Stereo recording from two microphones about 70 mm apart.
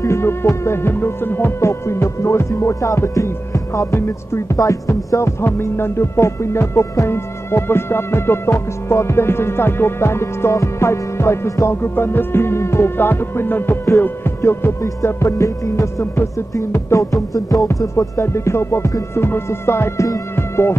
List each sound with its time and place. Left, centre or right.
0.0 s music: left
17.3 s music: left
17.9 s music: left